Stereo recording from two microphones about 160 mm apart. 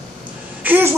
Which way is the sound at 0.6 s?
10° right (ahead or behind).